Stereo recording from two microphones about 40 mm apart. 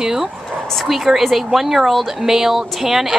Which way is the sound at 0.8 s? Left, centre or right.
Centre.